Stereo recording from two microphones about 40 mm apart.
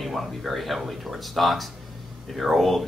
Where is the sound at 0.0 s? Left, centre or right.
Centre.